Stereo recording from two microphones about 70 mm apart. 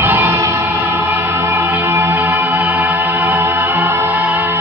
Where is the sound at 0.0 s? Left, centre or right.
Right.